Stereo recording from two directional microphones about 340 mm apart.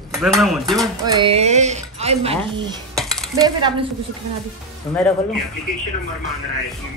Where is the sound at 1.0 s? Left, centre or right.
Centre.